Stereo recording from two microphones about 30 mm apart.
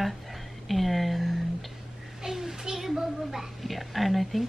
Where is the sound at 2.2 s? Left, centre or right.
Centre.